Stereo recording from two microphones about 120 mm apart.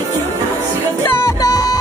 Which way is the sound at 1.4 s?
30° left (ahead or behind).